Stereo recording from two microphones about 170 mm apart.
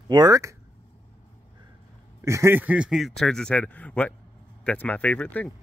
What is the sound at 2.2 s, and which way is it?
A man's voice, 15° right (ahead or behind).